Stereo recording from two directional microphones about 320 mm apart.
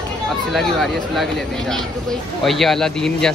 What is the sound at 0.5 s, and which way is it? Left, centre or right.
Speech, centre.